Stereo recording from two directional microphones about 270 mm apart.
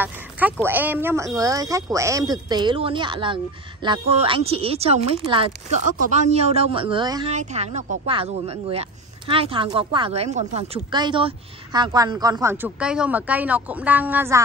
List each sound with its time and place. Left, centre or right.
0.0 s speech: centre